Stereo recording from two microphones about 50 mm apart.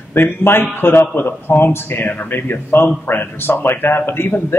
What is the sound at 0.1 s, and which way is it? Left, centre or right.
A man's voice, left.